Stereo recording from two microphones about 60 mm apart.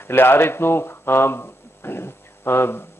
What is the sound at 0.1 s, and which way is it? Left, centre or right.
Speech, left.